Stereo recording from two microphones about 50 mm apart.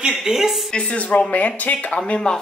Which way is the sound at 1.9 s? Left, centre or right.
Left.